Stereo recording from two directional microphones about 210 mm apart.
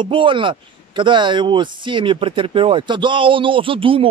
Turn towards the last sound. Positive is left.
turn(degrees=-25)  # may be behind; listen again after turning